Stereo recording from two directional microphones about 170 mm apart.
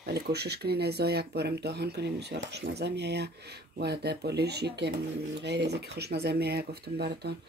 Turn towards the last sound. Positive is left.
turn(degrees=-75)  # may be behind; listen again after turning